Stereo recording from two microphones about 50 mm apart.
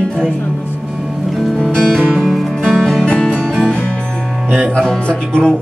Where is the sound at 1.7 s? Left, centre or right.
Centre.